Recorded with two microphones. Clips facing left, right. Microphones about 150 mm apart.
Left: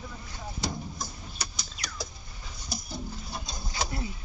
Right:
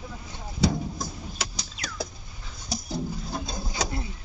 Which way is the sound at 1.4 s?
90° right.